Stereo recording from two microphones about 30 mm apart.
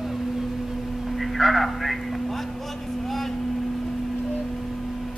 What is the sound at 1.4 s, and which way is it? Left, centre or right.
Speech, centre.